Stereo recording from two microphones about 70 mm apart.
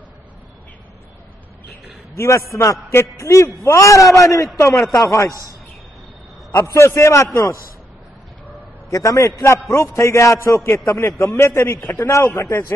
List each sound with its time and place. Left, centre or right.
2.1 s a man's voice: left
3.7 s a man's voice: left
5.3 s a man's voice: right
6.6 s a man's voice: left
8.9 s a man's voice: left